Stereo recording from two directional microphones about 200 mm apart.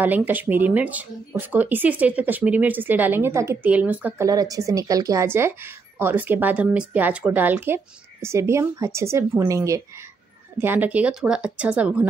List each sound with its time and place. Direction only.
0.0 s speech: 10° right (ahead or behind)